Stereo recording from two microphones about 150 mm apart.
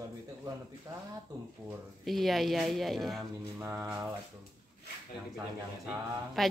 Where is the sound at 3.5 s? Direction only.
15° right (ahead or behind).